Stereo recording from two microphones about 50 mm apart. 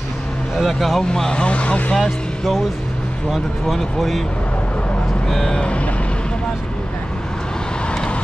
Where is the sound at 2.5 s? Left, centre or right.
Centre.